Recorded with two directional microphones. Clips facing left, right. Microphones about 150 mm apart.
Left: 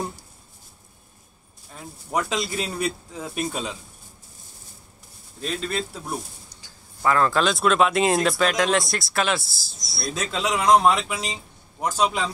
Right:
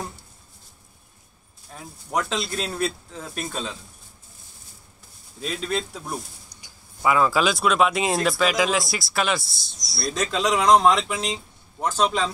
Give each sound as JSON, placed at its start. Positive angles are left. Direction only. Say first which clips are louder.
{"t": 1.7, "sound": "speech", "louder": "even", "side_deg": 0}
{"t": 5.4, "sound": "speech", "louder": "even", "side_deg": 0}
{"t": 6.6, "sound": "speech", "louder": "even", "side_deg": -10}